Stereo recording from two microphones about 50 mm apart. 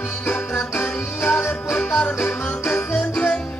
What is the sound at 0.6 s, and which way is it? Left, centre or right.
Music, left.